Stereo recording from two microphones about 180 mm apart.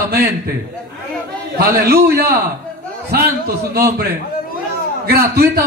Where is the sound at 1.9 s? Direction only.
60° right (ahead or behind).